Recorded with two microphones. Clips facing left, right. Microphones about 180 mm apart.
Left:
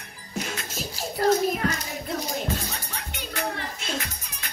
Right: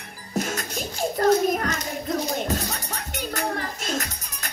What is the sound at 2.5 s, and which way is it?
Music, 40° right (ahead or behind).